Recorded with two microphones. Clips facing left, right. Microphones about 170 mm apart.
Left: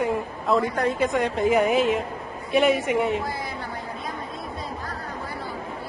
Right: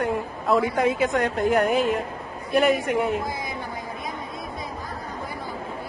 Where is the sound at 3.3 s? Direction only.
15° right (ahead or behind).